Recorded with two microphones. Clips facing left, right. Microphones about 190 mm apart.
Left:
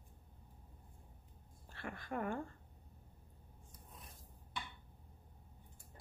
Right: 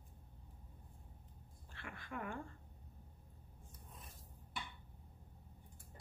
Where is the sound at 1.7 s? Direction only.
40° left (ahead or behind).